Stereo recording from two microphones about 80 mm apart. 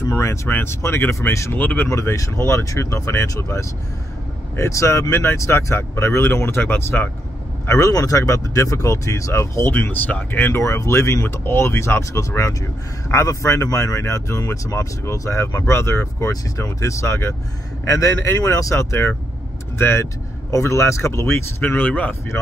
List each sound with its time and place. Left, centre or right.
0.0 s speech: left
1.6 s speech: left
1.9 s speech: left
7.6 s speech: left
10.4 s speech: left